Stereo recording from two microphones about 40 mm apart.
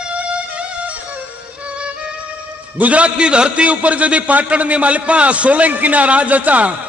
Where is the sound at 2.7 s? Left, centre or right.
Right.